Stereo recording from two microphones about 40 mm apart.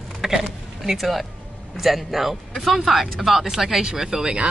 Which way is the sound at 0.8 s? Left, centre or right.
Centre.